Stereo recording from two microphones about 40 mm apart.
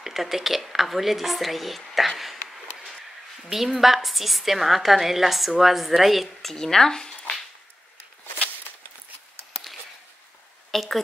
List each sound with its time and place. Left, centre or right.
0.0 s a woman's voice: centre
3.4 s a woman's voice: centre
6.5 s speech: centre
10.7 s speech: centre